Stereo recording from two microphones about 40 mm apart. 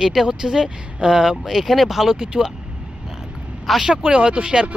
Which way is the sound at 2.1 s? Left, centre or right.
Centre.